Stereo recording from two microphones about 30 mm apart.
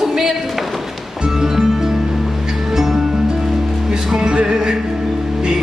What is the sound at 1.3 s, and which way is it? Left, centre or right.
Music, centre.